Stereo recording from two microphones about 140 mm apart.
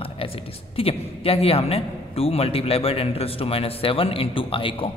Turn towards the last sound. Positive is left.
turn(degrees=40)  # may be behind; listen again after turning